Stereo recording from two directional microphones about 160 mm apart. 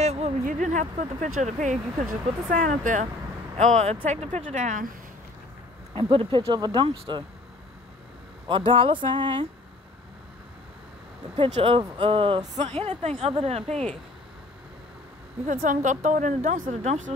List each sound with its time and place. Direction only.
0.0 s a sound: 40° right (ahead or behind)
0.5 s speech: 50° right (ahead or behind)
5.9 s speech: 30° right (ahead or behind)
8.5 s speech: 30° right (ahead or behind)
11.5 s speech: 35° right (ahead or behind)
15.4 s speech: 55° right (ahead or behind)